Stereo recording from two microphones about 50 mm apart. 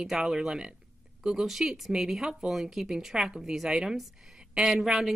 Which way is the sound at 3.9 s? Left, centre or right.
Centre.